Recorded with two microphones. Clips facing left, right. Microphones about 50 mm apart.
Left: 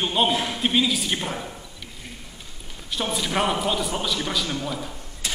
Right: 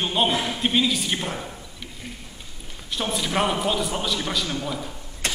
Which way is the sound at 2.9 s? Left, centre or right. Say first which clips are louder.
Even; centre.